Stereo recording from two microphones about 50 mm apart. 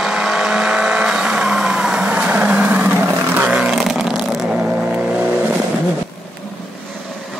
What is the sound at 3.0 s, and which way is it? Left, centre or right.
Vehicle, right.